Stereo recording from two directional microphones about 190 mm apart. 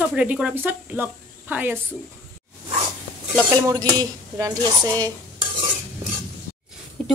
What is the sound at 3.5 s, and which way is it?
Speech, 20° right (ahead or behind).